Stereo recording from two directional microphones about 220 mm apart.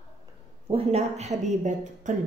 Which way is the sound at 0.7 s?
30° right (ahead or behind).